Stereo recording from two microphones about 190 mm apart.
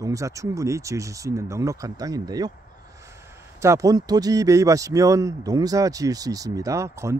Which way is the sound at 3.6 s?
15° right (ahead or behind).